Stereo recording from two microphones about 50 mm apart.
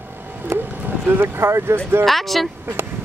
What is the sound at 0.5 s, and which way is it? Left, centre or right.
Speech, right.